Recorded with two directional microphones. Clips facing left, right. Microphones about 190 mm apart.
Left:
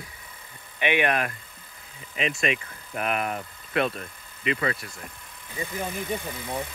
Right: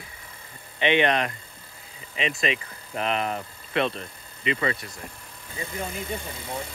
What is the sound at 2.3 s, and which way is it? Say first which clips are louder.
Speech: even; centre (ahead or behind).